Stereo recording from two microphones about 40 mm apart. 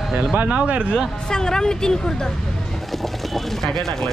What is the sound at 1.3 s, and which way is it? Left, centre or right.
Speech, centre.